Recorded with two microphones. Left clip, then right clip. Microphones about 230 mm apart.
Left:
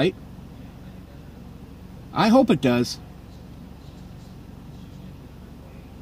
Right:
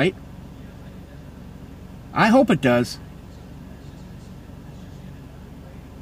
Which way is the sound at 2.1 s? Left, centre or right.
Left.